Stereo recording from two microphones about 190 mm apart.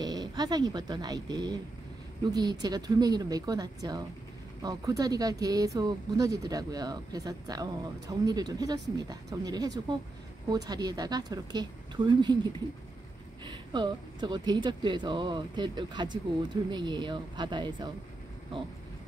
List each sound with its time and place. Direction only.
0.0 s speech: 20° right (ahead or behind)